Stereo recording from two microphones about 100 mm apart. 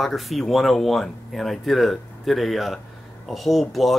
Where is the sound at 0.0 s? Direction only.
Centre (ahead or behind).